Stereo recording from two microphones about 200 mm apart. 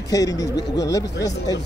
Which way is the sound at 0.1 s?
20° left (ahead or behind).